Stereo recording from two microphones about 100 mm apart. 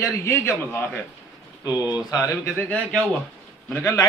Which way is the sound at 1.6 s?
35° left (ahead or behind).